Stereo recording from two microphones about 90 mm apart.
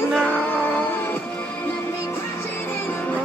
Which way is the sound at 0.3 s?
20° left (ahead or behind).